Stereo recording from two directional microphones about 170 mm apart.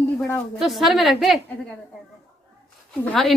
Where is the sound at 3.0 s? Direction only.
5° left (ahead or behind).